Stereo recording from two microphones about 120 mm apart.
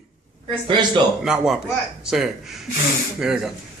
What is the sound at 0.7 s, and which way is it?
Speech, 40° right (ahead or behind).